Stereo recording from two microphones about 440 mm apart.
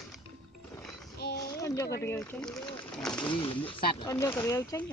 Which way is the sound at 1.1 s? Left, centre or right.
Left.